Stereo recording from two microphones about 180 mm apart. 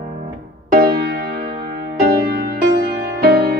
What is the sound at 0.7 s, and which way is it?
Music, 60° right (ahead or behind).